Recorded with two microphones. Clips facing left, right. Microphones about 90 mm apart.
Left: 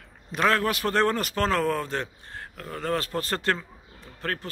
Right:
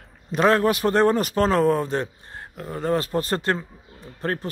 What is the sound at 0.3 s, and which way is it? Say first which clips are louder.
A man's voice: right 5 dB; 25° right (ahead or behind).